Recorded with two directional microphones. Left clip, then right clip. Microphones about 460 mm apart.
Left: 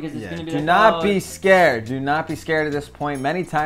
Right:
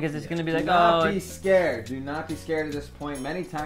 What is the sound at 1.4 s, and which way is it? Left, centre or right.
Speech, left.